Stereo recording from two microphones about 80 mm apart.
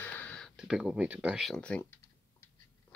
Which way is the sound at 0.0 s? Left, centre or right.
Centre.